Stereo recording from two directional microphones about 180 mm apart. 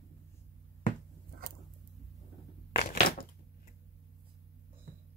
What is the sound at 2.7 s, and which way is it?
Crushing, 55° left (ahead or behind).